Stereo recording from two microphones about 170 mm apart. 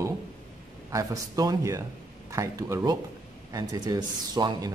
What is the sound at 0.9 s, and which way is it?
Speech, 20° right (ahead or behind).